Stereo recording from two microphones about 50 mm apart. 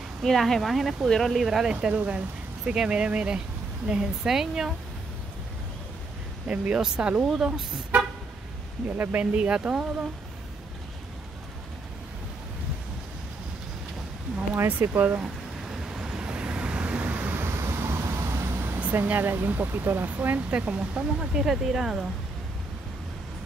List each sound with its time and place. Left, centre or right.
0.2 s speech: centre
1.5 s speech: centre
6.4 s speech: right
7.9 s vehicle: right
8.9 s speech: right
9.2 s speech: right
14.7 s speech: right
15.7 s vehicle: centre; by 17.4 s right
17.4 s vehicle: right
18.8 s speech: right
20.1 s speech: right
21.3 s speech: centre